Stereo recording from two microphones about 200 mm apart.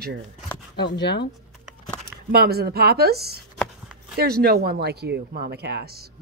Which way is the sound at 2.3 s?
50° right (ahead or behind).